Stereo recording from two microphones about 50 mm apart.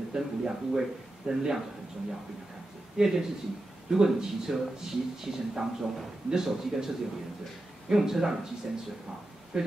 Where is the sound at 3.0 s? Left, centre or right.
Centre.